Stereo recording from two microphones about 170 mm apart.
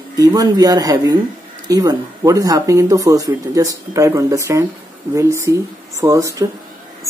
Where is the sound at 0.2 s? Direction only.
20° right (ahead or behind).